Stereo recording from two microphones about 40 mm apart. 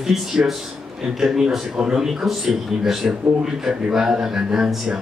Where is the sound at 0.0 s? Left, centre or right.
Centre.